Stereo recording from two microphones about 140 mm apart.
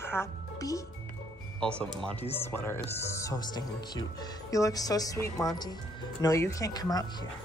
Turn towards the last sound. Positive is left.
turn(degrees=25)  # may be behind; listen again after turning